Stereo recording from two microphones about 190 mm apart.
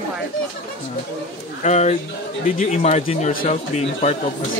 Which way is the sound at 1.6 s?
35° left (ahead or behind).